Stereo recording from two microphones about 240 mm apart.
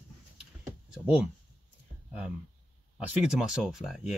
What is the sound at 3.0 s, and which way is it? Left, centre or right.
Speech, centre.